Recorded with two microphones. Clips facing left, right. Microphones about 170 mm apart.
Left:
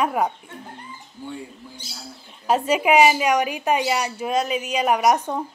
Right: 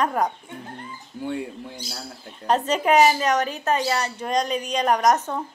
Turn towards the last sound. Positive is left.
turn(degrees=10)  # may be behind; listen again after turning